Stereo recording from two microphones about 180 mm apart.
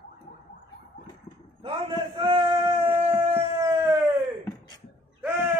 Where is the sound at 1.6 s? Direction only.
30° right (ahead or behind).